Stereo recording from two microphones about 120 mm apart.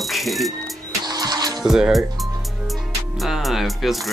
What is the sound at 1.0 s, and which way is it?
Music, 35° right (ahead or behind).